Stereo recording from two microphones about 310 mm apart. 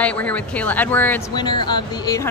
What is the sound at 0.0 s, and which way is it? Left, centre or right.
A woman's voice, centre.